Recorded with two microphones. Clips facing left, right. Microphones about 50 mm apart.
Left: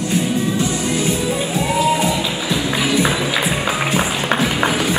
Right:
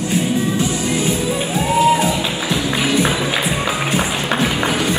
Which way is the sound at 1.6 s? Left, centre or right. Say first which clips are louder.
Right 3 dB; right.